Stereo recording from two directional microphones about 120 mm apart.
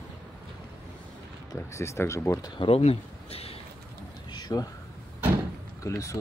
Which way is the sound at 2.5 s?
45° left (ahead or behind).